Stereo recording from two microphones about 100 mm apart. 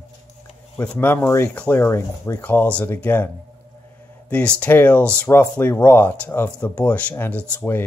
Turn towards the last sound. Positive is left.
turn(degrees=15)  # may be behind; listen again after turning